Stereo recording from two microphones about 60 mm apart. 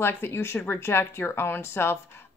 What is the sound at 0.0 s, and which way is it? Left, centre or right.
Speech, left.